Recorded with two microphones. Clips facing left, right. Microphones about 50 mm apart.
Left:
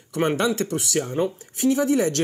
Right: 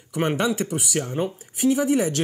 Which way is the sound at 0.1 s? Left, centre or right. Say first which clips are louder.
Left 1 dB; centre.